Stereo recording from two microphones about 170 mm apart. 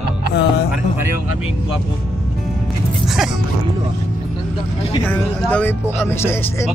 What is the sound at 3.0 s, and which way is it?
Speech, centre (ahead or behind).